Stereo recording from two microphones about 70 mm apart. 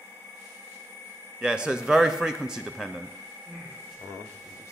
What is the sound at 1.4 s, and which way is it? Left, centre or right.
A man's voice, centre.